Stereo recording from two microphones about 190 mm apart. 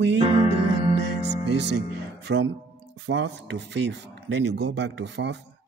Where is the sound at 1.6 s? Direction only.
65° right (ahead or behind).